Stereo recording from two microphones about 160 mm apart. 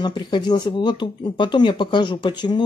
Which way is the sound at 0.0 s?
30° left (ahead or behind).